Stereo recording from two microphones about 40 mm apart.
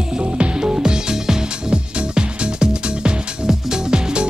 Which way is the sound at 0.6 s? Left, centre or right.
Centre.